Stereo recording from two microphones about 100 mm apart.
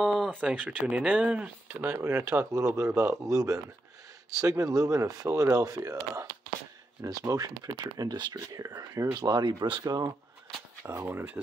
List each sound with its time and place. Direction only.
0.0 s a sound: centre (ahead or behind)
0.4 s speech: 10° right (ahead or behind); by 10.1 s 40° right (ahead or behind)
10.9 s speech: 20° right (ahead or behind)